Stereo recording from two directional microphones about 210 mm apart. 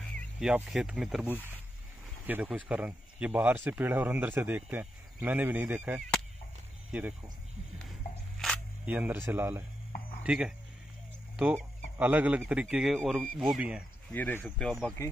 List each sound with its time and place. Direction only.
0.4 s a man's voice: 5° right (ahead or behind)
8.4 s single-lens reflex camera: 5° right (ahead or behind)
10.2 s a man's voice: 5° right (ahead or behind)
14.1 s a man's voice: 10° left (ahead or behind)